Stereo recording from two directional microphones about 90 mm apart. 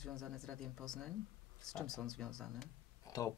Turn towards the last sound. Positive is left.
turn(degrees=40)  # may be behind; listen again after turning